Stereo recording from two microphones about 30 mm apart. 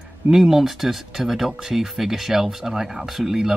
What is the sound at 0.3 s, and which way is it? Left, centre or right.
Speech, centre.